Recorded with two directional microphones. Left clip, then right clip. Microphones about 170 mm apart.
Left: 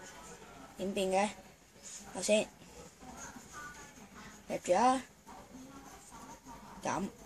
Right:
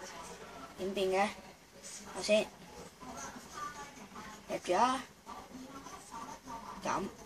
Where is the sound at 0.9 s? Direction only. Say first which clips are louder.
Even; 45° left (ahead or behind).